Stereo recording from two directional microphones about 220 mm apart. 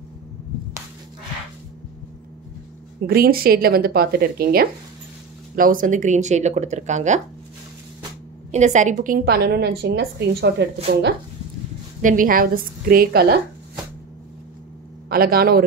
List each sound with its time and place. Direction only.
3.1 s a woman's voice: 45° right (ahead or behind)
8.5 s a woman's voice: 30° right (ahead or behind); by 11.1 s 45° right (ahead or behind)
12.0 s speech: 35° right (ahead or behind)
15.0 s a woman's voice: 40° right (ahead or behind)